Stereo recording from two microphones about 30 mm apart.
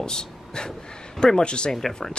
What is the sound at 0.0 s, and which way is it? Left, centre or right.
Vehicle, left.